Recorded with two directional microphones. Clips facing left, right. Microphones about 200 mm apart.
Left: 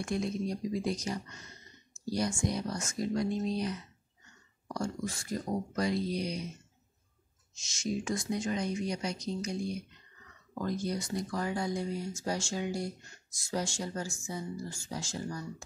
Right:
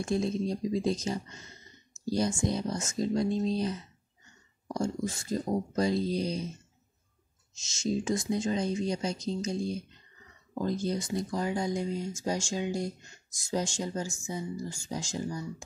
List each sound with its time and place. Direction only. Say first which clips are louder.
0.0 s speech: right 4 dB; 25° right (ahead or behind)
7.6 s speech: right 4 dB; 25° right (ahead or behind)